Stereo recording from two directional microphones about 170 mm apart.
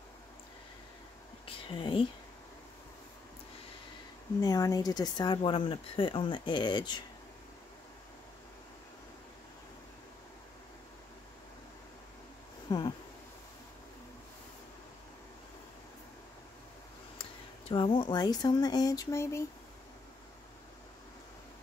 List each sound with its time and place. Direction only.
1.5 s speech: 30° left (ahead or behind)
4.4 s speech: 20° left (ahead or behind)
12.7 s speech: 25° left (ahead or behind)
17.2 s speech: 30° left (ahead or behind)